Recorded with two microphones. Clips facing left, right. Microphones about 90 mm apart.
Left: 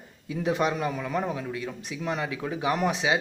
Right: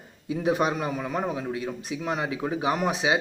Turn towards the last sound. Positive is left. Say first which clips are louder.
# right 1 dB
turn(degrees=-15)  # may be behind; listen again after turning